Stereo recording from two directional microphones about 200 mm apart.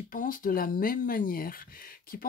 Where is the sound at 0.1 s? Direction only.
40° left (ahead or behind).